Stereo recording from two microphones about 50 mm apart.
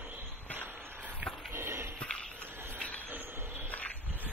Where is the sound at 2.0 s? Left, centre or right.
Left.